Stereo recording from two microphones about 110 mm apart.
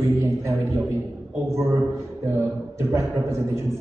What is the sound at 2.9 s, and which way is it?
Speech, 25° right (ahead or behind).